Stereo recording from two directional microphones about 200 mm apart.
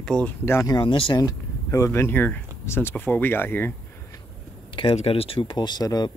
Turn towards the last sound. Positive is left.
turn(degrees=20)  # may be behind; listen again after turning